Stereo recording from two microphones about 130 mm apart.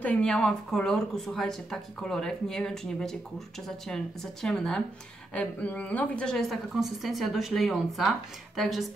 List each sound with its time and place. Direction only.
0.0 s a woman's voice: 10° left (ahead or behind)